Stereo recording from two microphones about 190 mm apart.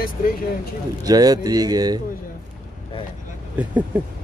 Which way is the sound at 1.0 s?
20° right (ahead or behind).